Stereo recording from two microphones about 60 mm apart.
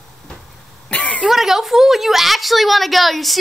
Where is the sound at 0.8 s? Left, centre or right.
Left.